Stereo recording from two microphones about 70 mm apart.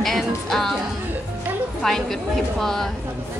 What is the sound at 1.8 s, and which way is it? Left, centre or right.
A woman's voice, centre.